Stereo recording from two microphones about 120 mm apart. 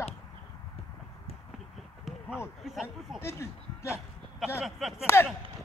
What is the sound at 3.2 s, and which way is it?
Speech, 25° left (ahead or behind).